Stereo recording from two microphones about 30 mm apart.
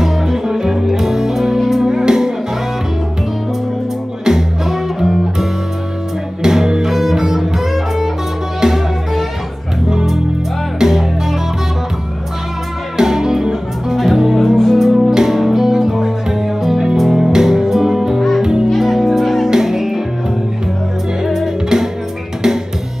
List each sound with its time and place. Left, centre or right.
0.0 s music: centre
4.2 s music: centre
4.6 s music: centre
6.4 s music: centre
12.9 s music: centre
14.4 s music: centre
14.8 s music: centre
21.2 s music: centre